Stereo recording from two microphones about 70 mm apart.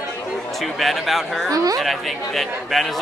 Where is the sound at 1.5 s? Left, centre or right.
Right.